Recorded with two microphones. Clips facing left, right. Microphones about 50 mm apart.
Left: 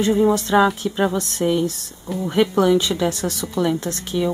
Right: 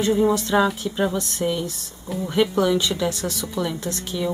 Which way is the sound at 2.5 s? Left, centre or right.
Left.